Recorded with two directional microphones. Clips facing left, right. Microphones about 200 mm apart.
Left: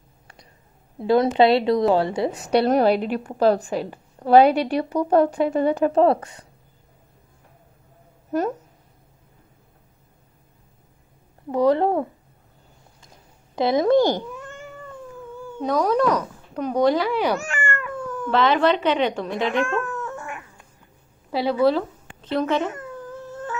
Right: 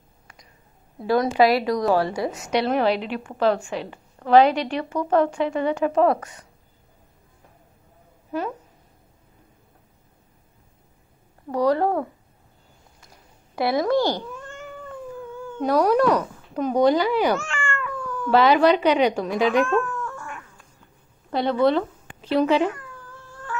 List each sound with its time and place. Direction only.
0.9 s a woman's voice: 25° left (ahead or behind)
8.3 s speech: 45° left (ahead or behind)
11.5 s speech: 20° left (ahead or behind)
13.6 s speech: 20° left (ahead or behind)
15.3 s cat: 10° left (ahead or behind)
15.6 s speech: 5° right (ahead or behind)
17.6 s cat: 40° left (ahead or behind)
17.9 s cat: 20° left (ahead or behind)
18.3 s speech: 5° right (ahead or behind)
19.9 s cat: 20° left (ahead or behind)
21.3 s speech: 5° left (ahead or behind)
22.2 s speech: 10° right (ahead or behind)
22.7 s a sound: 20° left (ahead or behind)